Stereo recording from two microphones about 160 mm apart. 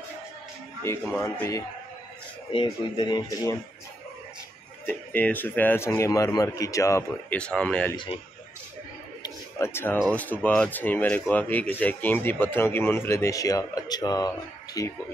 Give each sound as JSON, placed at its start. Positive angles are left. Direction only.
{"t": 0.9, "sound": "speech", "side_deg": 15}
{"t": 4.8, "sound": "speech", "side_deg": 10}
{"t": 7.9, "sound": "a man's voice", "side_deg": 30}
{"t": 9.2, "sound": "a sound", "side_deg": 15}
{"t": 10.1, "sound": "speech", "side_deg": 10}